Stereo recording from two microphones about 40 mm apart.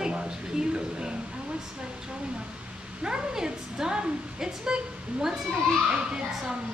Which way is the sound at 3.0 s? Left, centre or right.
Right.